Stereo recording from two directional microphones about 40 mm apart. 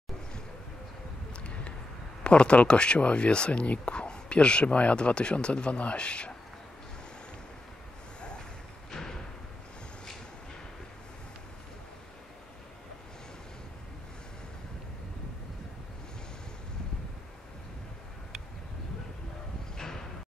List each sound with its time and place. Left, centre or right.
1.3 s a sound: left
2.2 s speech: left
8.9 s thump: centre